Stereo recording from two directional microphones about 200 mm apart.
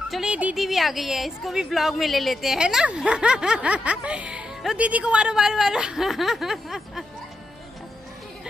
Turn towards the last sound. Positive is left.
turn(degrees=0)  # may be behind; listen again after turning